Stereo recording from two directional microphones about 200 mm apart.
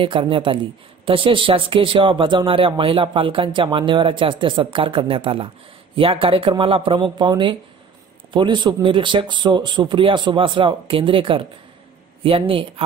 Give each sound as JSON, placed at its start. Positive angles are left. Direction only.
{"t": 0.0, "sound": "speech", "side_deg": -25}